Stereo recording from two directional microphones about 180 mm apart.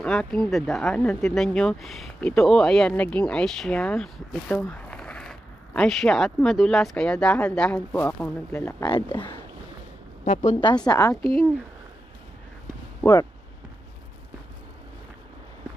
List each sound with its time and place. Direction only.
0.0 s speech: 5° left (ahead or behind)
8.8 s speech: 25° left (ahead or behind)
10.2 s speech: 40° left (ahead or behind)
10.9 s a woman's voice: 20° left (ahead or behind)
13.0 s speech: 20° left (ahead or behind)